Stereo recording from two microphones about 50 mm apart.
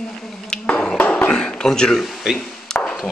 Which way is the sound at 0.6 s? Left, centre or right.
Left.